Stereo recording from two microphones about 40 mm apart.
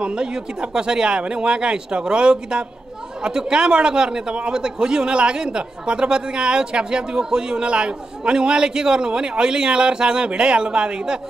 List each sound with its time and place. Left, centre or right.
0.0 s a man's voice: right